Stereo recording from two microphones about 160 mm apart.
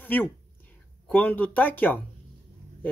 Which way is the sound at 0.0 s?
10° left (ahead or behind).